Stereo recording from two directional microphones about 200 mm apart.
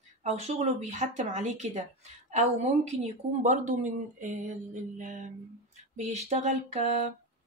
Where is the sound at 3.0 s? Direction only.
35° right (ahead or behind).